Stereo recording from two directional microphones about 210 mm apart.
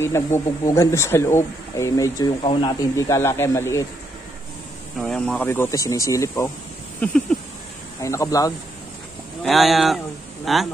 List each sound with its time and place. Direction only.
0.0 s speech: 10° left (ahead or behind)
4.9 s speech: centre (ahead or behind)
8.0 s speech: 15° left (ahead or behind)
9.4 s speech: centre (ahead or behind)